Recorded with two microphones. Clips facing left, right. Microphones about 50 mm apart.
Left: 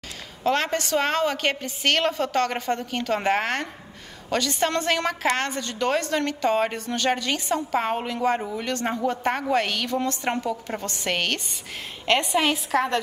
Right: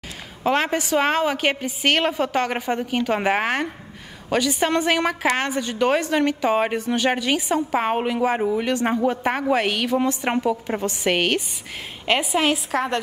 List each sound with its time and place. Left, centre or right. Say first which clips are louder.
0.4 s a woman's voice: right 2 dB; centre